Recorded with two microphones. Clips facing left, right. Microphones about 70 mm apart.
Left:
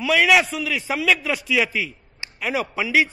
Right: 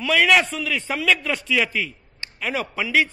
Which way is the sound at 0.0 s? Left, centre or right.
Centre.